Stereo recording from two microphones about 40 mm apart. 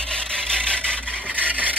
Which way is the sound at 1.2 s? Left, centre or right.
Right.